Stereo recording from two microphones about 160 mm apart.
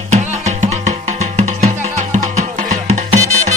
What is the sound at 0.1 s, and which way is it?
Music, 45° right (ahead or behind).